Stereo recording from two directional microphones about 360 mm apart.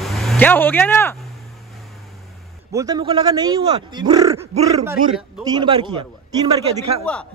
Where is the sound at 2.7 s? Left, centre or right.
Centre.